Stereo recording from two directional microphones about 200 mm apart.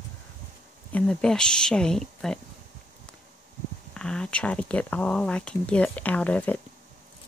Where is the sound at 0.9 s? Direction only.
5° left (ahead or behind).